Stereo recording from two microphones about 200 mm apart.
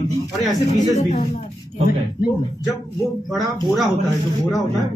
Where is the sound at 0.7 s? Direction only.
40° left (ahead or behind).